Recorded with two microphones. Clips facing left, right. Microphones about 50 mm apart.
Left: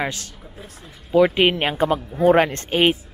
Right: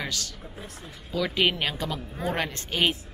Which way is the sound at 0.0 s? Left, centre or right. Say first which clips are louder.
Left 6 dB; left.